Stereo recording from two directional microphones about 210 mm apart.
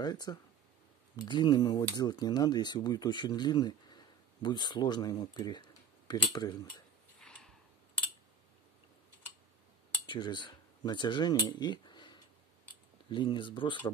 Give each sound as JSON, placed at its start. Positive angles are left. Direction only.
{"t": 0.0, "sound": "speech", "side_deg": 20}
{"t": 7.2, "sound": "a sound", "side_deg": 5}
{"t": 10.0, "sound": "speech", "side_deg": 20}